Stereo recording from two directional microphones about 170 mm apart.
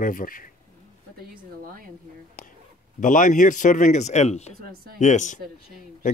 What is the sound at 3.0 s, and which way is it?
Speech, 50° left (ahead or behind).